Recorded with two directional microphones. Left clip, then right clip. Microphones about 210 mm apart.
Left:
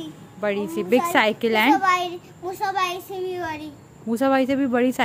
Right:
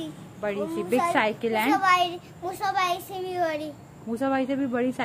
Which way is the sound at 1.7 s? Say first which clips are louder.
Left 2 dB; 20° right (ahead or behind).